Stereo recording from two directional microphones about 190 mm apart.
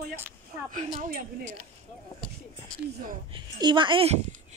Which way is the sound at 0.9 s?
45° right (ahead or behind).